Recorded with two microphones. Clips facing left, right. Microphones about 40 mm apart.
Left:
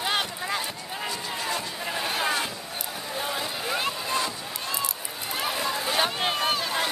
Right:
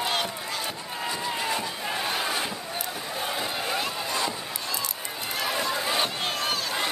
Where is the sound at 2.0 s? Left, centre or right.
Centre.